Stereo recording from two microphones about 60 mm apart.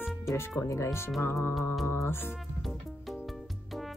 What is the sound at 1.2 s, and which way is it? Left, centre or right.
Speech, left.